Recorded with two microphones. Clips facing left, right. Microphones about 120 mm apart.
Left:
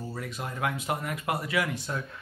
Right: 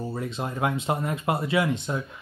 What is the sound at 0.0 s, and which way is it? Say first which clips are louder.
Speech: right 6 dB; 25° right (ahead or behind).